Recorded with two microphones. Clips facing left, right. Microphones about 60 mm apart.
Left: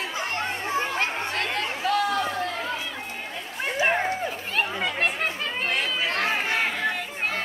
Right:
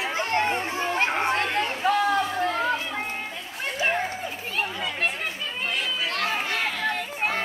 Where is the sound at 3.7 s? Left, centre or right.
Left.